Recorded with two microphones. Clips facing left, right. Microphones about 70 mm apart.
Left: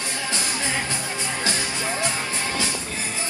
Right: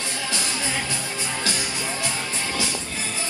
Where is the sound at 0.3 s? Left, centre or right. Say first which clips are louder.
Left 1 dB; left.